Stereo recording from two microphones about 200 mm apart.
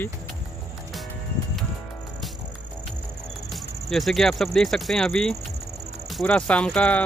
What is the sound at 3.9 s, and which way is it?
Speech, centre (ahead or behind).